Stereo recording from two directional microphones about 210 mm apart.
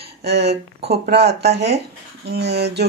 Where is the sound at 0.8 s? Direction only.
50° right (ahead or behind).